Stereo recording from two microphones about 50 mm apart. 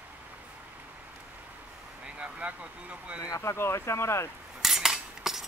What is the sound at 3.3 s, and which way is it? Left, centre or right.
Speech, left.